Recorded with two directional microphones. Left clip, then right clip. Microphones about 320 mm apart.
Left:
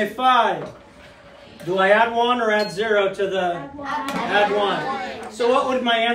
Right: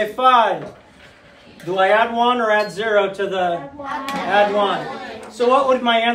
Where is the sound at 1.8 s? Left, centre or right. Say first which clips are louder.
Right 1 dB; centre.